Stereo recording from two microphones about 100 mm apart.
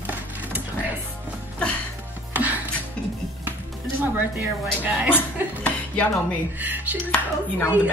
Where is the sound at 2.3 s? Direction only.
15° right (ahead or behind).